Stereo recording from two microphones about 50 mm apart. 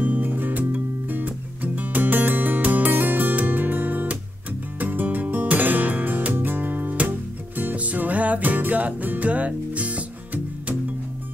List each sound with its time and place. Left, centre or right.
0.0 s music: right